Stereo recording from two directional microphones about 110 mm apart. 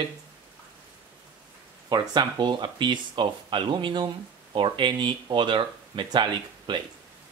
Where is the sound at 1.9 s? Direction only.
40° right (ahead or behind).